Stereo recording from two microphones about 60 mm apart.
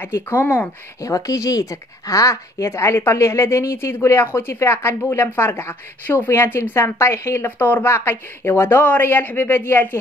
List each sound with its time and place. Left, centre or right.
0.0 s a man's voice: left
1.0 s a woman's voice: left
7.4 s a man's voice: left